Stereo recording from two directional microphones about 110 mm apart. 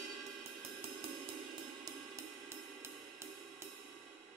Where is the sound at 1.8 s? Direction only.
30° right (ahead or behind).